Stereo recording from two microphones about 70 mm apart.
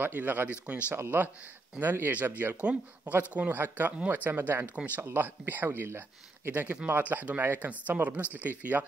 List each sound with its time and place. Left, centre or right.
0.0 s speech: right
6.5 s speech: right